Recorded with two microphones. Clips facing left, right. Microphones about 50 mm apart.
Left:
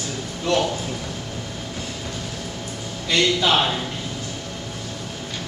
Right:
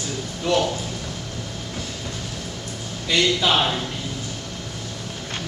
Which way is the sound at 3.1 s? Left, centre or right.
Centre.